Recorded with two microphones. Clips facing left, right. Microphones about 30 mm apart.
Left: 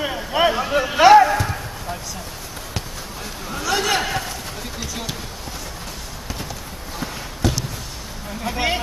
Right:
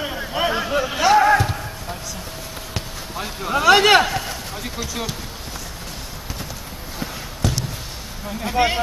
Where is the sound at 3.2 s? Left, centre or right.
Right.